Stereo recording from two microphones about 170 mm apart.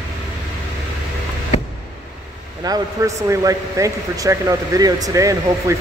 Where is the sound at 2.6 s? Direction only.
20° right (ahead or behind).